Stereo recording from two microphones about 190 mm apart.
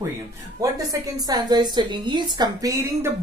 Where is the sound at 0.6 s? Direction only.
20° right (ahead or behind).